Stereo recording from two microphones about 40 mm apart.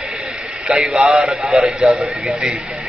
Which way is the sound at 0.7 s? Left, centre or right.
Centre.